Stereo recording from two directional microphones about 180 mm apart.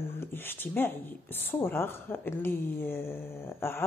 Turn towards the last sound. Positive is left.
turn(degrees=15)  # may be behind; listen again after turning